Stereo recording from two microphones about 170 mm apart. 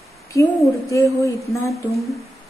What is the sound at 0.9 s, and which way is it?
Speech, 20° left (ahead or behind).